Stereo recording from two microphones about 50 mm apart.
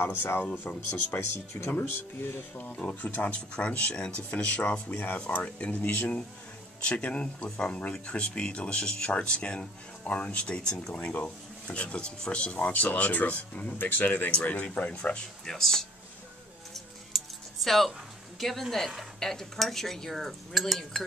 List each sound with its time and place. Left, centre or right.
0.2 s speech: left
0.8 s speech: left
1.7 s speech: left
2.5 s speech: left
4.8 s speech: left
5.2 s speech: left
10.4 s speech: centre
11.0 s speech: left
15.4 s speech: centre
16.7 s a sound: centre
18.4 s cutlery: centre